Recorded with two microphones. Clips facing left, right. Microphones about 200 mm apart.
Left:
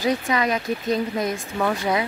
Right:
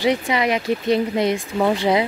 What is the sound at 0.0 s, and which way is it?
Speech, 15° right (ahead or behind).